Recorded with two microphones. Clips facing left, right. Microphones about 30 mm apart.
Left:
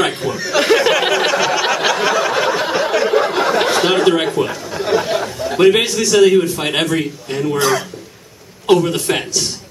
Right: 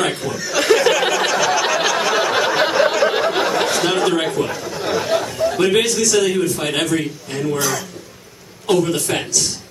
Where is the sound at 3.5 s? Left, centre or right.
Centre.